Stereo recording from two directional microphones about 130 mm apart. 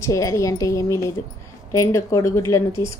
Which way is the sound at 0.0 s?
25° left (ahead or behind).